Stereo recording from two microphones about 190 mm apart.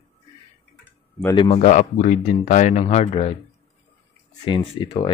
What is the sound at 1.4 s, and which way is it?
Speech, 40° left (ahead or behind).